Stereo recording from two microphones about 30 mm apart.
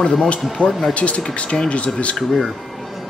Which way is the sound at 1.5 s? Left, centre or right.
Centre.